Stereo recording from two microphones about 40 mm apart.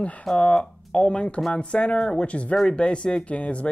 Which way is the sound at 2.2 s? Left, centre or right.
Left.